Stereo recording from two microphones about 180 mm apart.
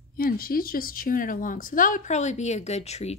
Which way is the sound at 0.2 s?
55° left (ahead or behind).